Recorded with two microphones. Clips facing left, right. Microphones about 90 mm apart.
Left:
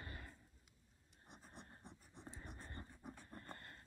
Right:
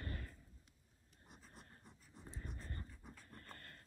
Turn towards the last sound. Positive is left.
turn(degrees=20)  # may be behind; listen again after turning